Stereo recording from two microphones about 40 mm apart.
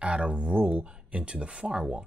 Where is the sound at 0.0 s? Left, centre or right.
Right.